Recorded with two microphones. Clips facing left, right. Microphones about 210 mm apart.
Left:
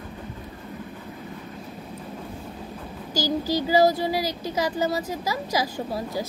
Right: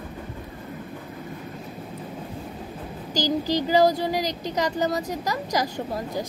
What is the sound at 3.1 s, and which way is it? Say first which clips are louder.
Speech: right 1 dB; 15° right (ahead or behind).